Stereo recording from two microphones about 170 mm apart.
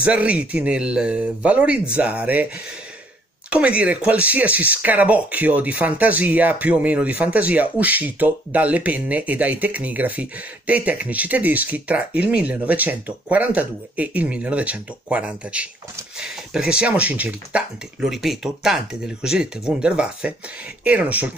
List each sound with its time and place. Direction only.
0.0 s speech: 5° right (ahead or behind)
3.4 s speech: 5° right (ahead or behind)